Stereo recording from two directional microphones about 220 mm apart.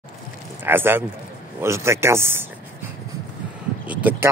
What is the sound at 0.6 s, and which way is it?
A man's voice, 10° right (ahead or behind).